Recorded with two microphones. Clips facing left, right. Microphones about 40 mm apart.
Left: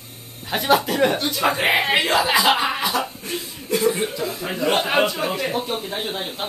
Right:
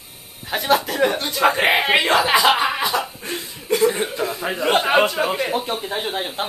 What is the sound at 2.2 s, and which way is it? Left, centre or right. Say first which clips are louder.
Chuckle: right 2 dB; right.